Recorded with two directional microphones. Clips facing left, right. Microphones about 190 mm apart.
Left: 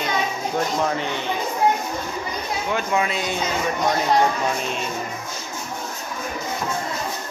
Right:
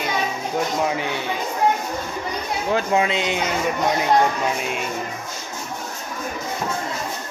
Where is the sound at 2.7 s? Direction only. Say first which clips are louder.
Right 3 dB; 25° right (ahead or behind).